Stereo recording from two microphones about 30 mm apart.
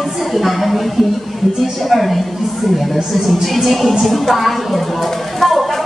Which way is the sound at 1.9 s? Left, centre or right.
Centre.